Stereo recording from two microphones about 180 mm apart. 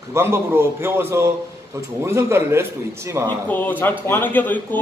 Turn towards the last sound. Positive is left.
turn(degrees=10)  # may be behind; listen again after turning